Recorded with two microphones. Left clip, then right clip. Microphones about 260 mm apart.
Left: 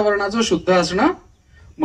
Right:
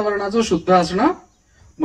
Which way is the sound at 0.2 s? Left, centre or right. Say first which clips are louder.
Even; centre.